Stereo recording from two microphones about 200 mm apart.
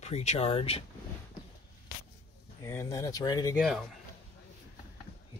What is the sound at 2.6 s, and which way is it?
Speech, 15° left (ahead or behind).